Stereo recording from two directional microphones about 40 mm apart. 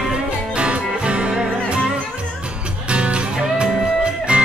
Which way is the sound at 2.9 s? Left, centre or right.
Right.